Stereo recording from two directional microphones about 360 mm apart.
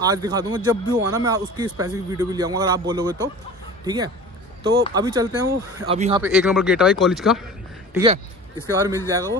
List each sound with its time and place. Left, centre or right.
0.0 s speech: centre
6.2 s speech: centre
8.0 s speech: centre